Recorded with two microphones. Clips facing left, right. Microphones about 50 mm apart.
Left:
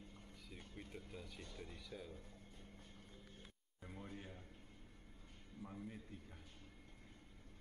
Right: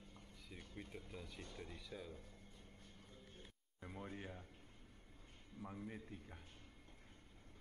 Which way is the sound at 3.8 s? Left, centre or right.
Centre.